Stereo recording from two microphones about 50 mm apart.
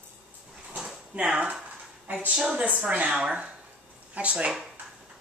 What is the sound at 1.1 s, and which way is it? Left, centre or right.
Speech, right.